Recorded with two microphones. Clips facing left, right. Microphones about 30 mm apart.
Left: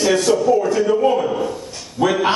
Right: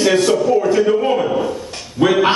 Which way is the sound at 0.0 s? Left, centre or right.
Right.